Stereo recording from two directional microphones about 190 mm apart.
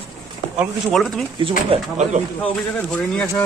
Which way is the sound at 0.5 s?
Centre (ahead or behind).